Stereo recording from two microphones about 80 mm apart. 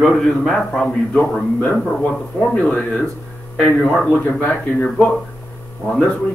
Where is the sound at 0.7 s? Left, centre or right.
Centre.